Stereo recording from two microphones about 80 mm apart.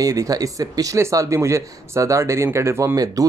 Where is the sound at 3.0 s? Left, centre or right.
Right.